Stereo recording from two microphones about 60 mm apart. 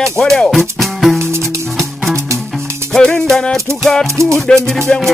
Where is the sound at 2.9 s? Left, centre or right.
Centre.